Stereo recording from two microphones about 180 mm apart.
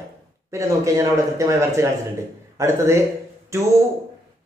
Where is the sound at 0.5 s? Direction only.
15° right (ahead or behind).